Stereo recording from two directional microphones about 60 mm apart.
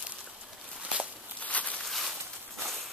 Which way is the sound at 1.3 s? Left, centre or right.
Left.